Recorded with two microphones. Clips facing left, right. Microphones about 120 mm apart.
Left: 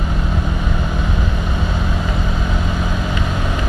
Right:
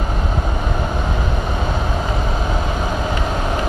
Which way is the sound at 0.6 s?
35° right (ahead or behind).